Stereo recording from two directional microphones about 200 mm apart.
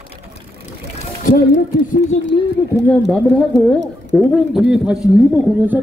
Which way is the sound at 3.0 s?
Centre (ahead or behind).